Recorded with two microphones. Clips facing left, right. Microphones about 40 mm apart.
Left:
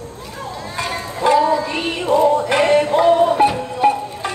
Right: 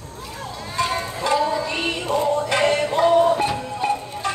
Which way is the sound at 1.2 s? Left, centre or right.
Left.